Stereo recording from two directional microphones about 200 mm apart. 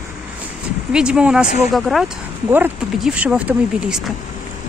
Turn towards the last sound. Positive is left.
turn(degrees=-5)  # may be behind; listen again after turning